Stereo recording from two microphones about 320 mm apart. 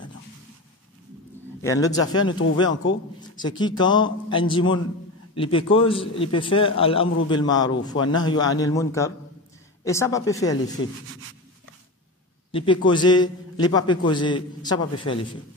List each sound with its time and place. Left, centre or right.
1.6 s a man's voice: centre
12.4 s a sound: centre
12.8 s a man's voice: centre